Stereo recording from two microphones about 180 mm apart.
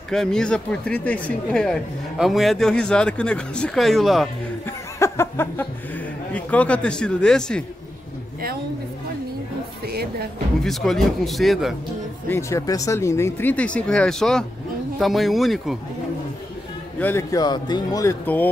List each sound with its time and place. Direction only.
0.1 s speech: 5° left (ahead or behind)
4.6 s chuckle: 15° left (ahead or behind)
6.3 s speech: 5° left (ahead or behind)
10.6 s speech: centre (ahead or behind)
12.3 s speech: 15° left (ahead or behind); by 15.8 s centre (ahead or behind)
17.0 s a man's voice: 15° left (ahead or behind)
18.2 s speech: 10° left (ahead or behind)